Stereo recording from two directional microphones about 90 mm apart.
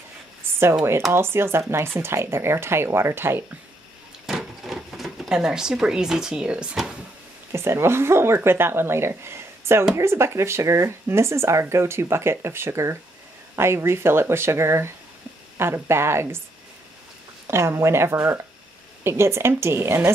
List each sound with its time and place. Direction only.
1.1 s speech: 25° right (ahead or behind)
4.3 s sewing machine: 5° right (ahead or behind)
7.5 s speech: 30° right (ahead or behind)
17.5 s speech: 30° right (ahead or behind)